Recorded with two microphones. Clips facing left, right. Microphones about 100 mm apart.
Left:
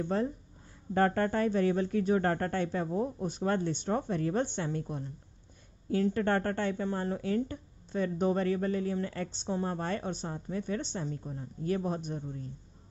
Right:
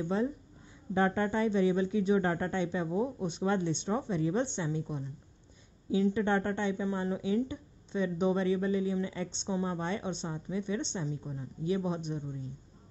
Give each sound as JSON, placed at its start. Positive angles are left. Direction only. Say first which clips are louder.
{"t": 0.0, "sound": "speech", "louder": "even", "side_deg": 50}
{"t": 2.9, "sound": "speech", "louder": "even", "side_deg": -5}
{"t": 3.3, "sound": "speech", "louder": "even", "side_deg": 45}
{"t": 5.9, "sound": "speech", "louder": "even", "side_deg": 55}